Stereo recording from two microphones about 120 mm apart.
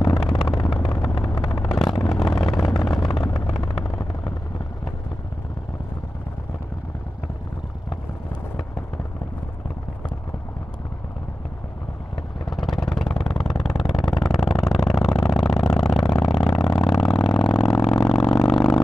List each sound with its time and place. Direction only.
0.0 s vehicle: 5° left (ahead or behind)
2.6 s vehicle: 35° left (ahead or behind)
3.0 s vehicle: 5° left (ahead or behind)
12.4 s vehicle: centre (ahead or behind)
13.8 s a sound: 5° left (ahead or behind)